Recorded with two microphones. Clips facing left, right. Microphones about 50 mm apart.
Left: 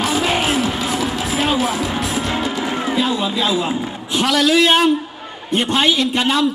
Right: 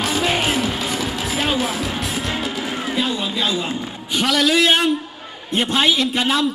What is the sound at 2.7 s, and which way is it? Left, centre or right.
A man's voice, centre.